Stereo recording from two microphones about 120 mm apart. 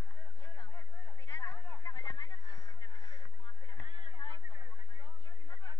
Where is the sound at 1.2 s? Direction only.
25° left (ahead or behind).